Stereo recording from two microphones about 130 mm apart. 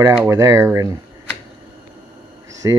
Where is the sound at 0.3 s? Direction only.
25° right (ahead or behind).